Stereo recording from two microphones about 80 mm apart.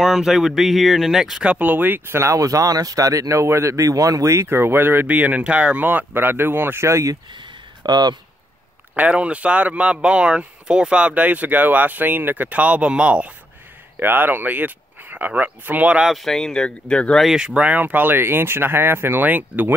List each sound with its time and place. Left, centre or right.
0.0 s speech: centre
1.4 s speech: centre; by 7.2 s right
7.3 s a sound: right
8.9 s speech: centre
14.0 s speech: right
16.1 s speech: centre
17.2 s speech: centre; by 19.7 s right